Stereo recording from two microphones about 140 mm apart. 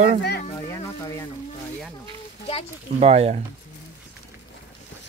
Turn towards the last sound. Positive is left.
turn(degrees=-50)  # may be behind; listen again after turning